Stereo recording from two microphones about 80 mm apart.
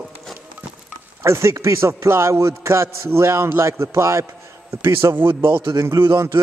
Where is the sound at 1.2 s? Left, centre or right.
Right.